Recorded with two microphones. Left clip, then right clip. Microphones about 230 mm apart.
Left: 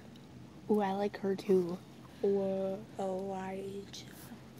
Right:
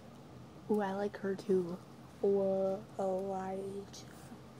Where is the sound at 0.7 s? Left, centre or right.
Centre.